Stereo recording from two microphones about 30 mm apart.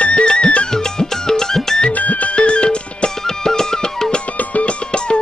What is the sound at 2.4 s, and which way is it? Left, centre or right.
Music, left.